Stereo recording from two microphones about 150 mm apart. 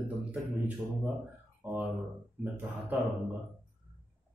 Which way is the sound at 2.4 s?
10° right (ahead or behind).